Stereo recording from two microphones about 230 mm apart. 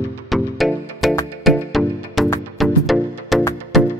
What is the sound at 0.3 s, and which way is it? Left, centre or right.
Music, centre.